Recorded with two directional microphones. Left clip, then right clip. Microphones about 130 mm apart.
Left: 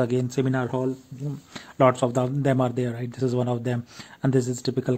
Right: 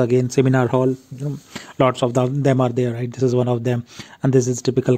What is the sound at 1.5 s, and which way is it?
Speech, 50° right (ahead or behind).